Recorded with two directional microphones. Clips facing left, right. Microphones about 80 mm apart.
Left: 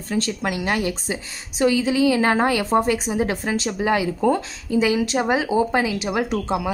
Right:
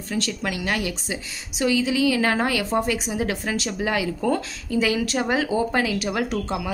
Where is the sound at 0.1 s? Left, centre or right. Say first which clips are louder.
Left 3 dB; left.